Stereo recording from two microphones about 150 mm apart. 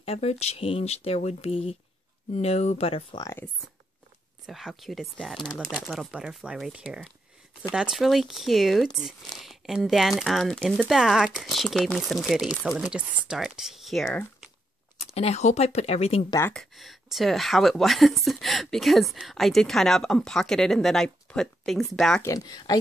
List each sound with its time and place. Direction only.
0.0 s speech: 40° left (ahead or behind)
3.2 s speech: 20° left (ahead or behind)
4.5 s speech: centre (ahead or behind)
15.1 s speech: 45° left (ahead or behind)
16.4 s speech: centre (ahead or behind)
22.2 s speech: 25° left (ahead or behind)